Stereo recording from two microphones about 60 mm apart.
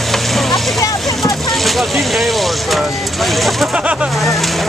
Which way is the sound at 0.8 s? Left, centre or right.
Left.